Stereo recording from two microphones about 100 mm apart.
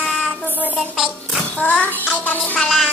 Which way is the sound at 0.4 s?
15° left (ahead or behind).